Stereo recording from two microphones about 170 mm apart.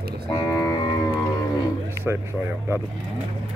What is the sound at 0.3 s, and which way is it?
Music, 20° left (ahead or behind).